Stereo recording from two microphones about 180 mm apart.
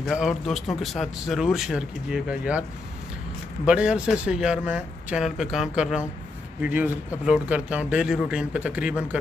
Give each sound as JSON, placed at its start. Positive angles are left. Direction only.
{"t": 0.0, "sound": "speech", "side_deg": 0}
{"t": 3.6, "sound": "a man's voice", "side_deg": -5}